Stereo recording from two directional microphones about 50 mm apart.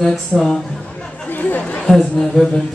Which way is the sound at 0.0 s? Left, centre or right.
Centre.